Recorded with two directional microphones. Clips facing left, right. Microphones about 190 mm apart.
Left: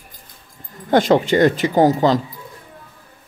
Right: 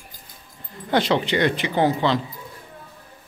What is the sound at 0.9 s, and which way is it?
Speech, 45° left (ahead or behind).